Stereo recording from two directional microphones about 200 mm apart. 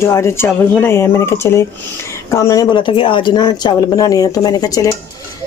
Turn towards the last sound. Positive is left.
turn(degrees=20)  # may be behind; listen again after turning